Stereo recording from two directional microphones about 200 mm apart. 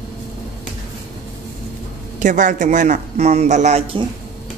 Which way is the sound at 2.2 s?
40° right (ahead or behind).